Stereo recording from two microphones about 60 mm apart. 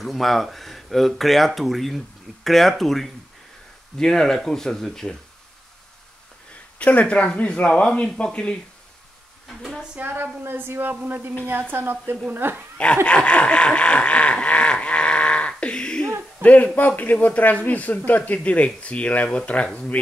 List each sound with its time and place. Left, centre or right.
0.0 s speech: centre
6.8 s a man's voice: left
9.5 s speech: centre
9.9 s a woman's voice: right
13.0 s a sound: centre
16.4 s a man's voice: left